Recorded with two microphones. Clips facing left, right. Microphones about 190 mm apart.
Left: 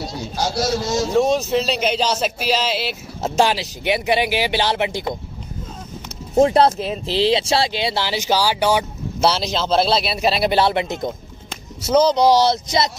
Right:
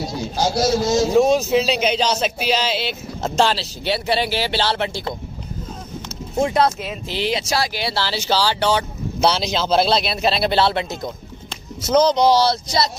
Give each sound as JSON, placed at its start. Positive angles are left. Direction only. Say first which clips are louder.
{"t": 0.6, "sound": "a man's voice", "louder": "right 3 dB", "side_deg": -20}
{"t": 1.1, "sound": "speech", "louder": "right 1 dB", "side_deg": -5}
{"t": 6.3, "sound": "speech", "louder": "left 4 dB", "side_deg": 35}
{"t": 9.2, "sound": "speech", "louder": "even", "side_deg": 0}
{"t": 11.8, "sound": "speech", "louder": "even", "side_deg": 5}